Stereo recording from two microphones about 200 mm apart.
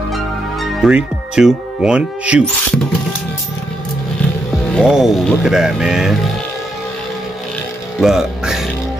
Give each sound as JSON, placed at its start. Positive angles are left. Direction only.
{"t": 0.1, "sound": "music", "side_deg": 0}
{"t": 4.7, "sound": "speech", "side_deg": 0}
{"t": 8.0, "sound": "speech", "side_deg": 0}